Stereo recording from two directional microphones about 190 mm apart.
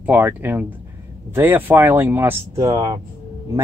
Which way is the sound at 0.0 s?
10° right (ahead or behind).